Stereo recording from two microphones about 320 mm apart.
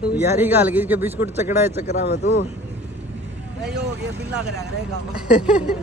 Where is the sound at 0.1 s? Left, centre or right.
Centre.